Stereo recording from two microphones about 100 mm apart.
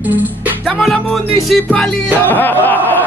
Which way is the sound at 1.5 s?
5° left (ahead or behind).